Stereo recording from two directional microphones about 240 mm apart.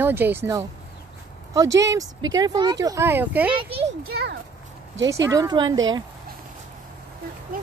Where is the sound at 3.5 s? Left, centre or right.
Right.